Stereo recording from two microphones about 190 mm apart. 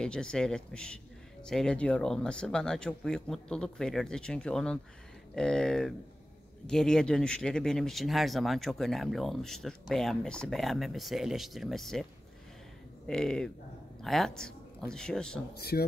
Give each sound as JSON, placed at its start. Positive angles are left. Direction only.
{"t": 0.0, "sound": "speech", "side_deg": 5}
{"t": 15.5, "sound": "speech", "side_deg": 55}